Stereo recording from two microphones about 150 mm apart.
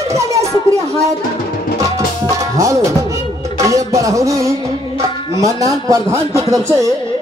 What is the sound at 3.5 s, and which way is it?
A man's voice, 20° right (ahead or behind).